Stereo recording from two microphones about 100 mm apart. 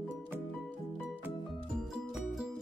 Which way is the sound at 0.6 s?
15° left (ahead or behind).